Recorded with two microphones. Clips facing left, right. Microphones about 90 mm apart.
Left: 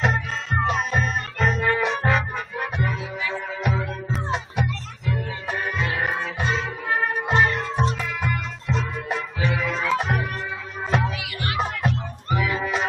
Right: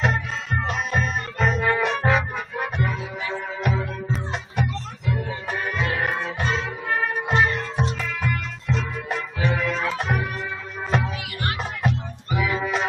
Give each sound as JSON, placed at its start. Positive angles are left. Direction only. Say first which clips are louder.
{"t": 0.0, "sound": "music", "louder": "even", "side_deg": 0}
{"t": 11.1, "sound": "music", "louder": "right 1 dB", "side_deg": -40}
{"t": 11.5, "sound": "music", "louder": "left 4 dB", "side_deg": 0}